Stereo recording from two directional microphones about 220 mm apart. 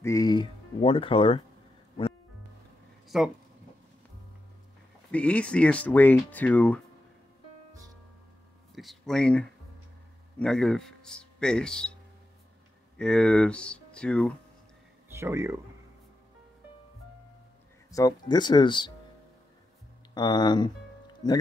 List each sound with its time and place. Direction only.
0.0 s speech: 15° left (ahead or behind)
3.1 s speech: centre (ahead or behind)
5.1 s speech: 5° left (ahead or behind)
8.7 s speech: centre (ahead or behind)
15.1 s speech: 10° right (ahead or behind)
17.9 s speech: 20° left (ahead or behind)
20.2 s speech: 20° left (ahead or behind)